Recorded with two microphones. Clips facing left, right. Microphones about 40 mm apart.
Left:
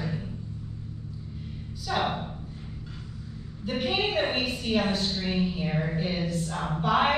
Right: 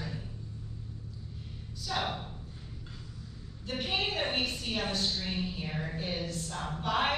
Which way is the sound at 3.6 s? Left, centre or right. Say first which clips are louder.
Left 6 dB; centre.